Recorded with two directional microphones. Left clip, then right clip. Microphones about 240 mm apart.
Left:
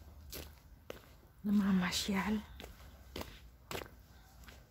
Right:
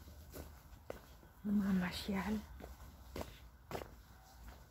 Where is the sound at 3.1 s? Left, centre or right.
Centre.